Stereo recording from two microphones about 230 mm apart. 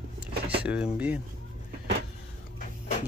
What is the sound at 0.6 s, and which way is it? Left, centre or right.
Speech, centre.